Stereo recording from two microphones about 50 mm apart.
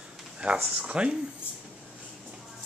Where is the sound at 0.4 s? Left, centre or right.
Centre.